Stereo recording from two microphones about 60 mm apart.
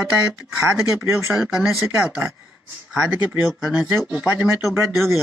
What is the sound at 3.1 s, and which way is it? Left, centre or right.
Speech, right.